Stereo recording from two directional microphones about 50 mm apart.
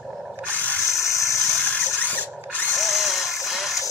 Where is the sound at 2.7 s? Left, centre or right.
Centre.